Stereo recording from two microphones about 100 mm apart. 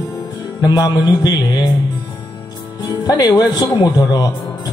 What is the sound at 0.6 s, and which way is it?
Music, 45° left (ahead or behind).